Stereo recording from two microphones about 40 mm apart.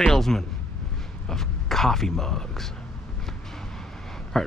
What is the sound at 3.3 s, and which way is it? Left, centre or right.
Vehicle, centre.